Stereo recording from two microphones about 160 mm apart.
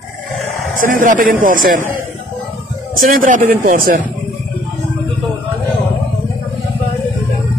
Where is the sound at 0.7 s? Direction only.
55° right (ahead or behind).